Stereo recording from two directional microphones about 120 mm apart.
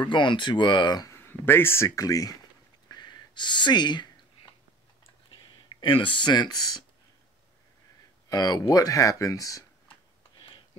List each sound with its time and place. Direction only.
0.1 s speech: 45° left (ahead or behind)
1.1 s speech: 20° left (ahead or behind)
2.9 s a sound: 35° left (ahead or behind)
5.3 s speech: 45° left (ahead or behind)
8.3 s speech: 35° left (ahead or behind)